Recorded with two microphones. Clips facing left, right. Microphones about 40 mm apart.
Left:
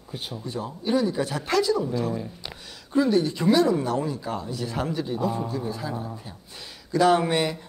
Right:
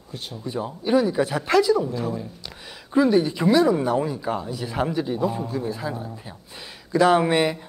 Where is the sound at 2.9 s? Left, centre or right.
Centre.